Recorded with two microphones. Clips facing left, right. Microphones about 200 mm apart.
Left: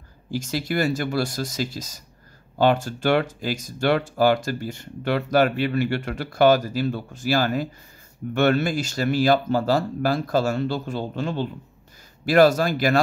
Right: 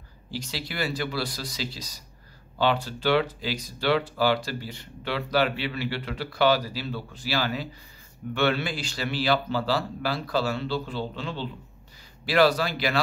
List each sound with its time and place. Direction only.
0.3 s speech: 45° left (ahead or behind)